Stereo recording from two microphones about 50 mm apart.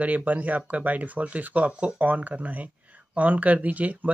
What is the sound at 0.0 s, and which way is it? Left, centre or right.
Speech, right.